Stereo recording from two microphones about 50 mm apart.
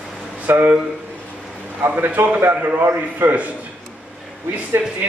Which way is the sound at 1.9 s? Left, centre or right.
Right.